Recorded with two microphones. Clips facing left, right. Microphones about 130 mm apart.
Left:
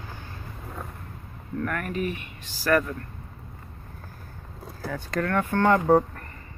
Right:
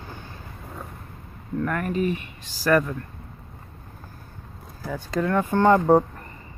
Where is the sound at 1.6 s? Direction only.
25° right (ahead or behind).